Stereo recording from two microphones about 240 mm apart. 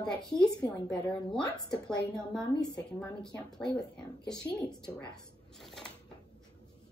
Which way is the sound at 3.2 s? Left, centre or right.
Centre.